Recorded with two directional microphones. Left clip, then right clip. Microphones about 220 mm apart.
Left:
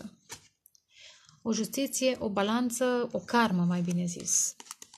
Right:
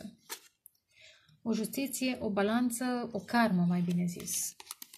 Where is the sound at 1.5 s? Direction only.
35° left (ahead or behind).